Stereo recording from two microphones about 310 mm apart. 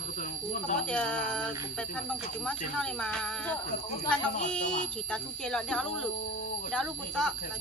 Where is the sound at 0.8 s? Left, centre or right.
Centre.